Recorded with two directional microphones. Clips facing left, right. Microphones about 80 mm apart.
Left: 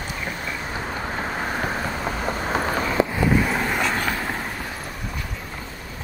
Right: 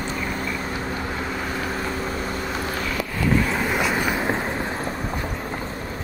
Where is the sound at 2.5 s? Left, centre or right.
Left.